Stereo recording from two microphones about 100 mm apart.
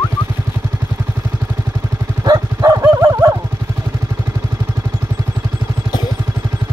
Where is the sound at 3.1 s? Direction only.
30° right (ahead or behind).